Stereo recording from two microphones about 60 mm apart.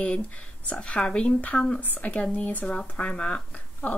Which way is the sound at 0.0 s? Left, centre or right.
Left.